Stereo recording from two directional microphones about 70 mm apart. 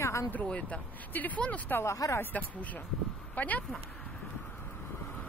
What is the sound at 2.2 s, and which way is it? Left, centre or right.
Speech, left.